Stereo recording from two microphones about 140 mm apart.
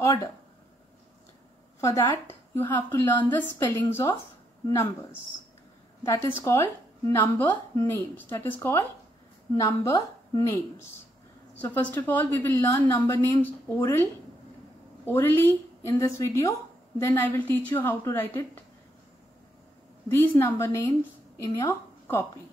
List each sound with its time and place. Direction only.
0.0 s a woman's voice: 25° left (ahead or behind)
1.8 s a woman's voice: 25° left (ahead or behind)
6.0 s a woman's voice: 20° left (ahead or behind)
9.6 s a woman's voice: 20° left (ahead or behind)
11.5 s a woman's voice: 10° left (ahead or behind)
15.0 s a woman's voice: 15° left (ahead or behind)
20.1 s a woman's voice: 15° left (ahead or behind)